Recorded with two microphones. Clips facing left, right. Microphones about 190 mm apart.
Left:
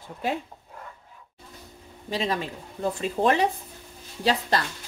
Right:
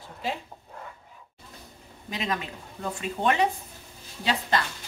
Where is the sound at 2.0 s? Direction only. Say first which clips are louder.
Left 4 dB; 30° left (ahead or behind).